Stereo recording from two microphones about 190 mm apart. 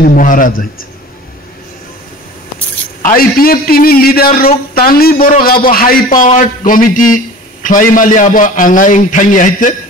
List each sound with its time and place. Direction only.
0.0 s a man's voice: 45° left (ahead or behind)
3.0 s a man's voice: 50° left (ahead or behind)